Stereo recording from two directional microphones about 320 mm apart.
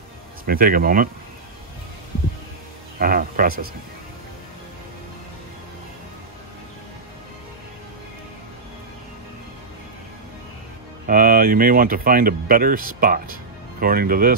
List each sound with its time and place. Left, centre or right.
0.5 s speech: right
3.0 s speech: right
11.1 s speech: right